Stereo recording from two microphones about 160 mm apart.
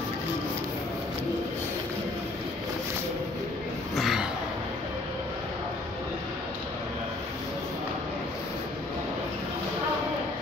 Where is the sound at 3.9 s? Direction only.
Centre (ahead or behind).